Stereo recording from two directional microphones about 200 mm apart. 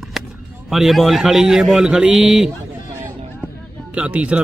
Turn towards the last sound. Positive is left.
turn(degrees=-5)  # may be behind; listen again after turning